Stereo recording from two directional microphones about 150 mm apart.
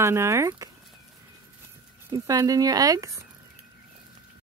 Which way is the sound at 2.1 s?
25° right (ahead or behind).